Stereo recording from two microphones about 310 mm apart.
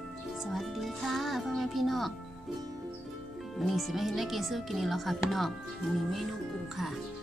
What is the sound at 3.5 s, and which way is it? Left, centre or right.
Speech, centre.